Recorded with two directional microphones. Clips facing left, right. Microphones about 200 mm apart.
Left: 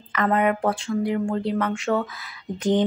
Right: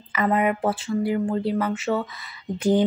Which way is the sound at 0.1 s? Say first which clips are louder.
Even; 5° right (ahead or behind).